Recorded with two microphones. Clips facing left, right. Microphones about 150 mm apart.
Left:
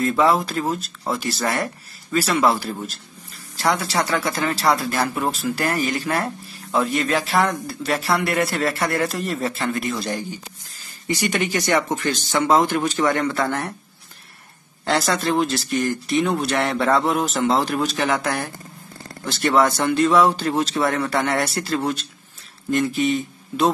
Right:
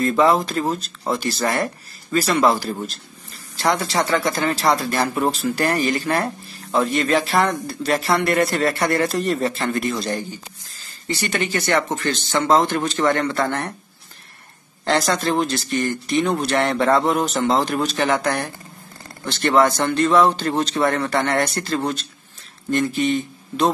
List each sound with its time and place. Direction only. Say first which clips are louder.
0.0 s speech: right 1 dB; centre (ahead or behind)
14.9 s speech: right 1 dB; centre (ahead or behind)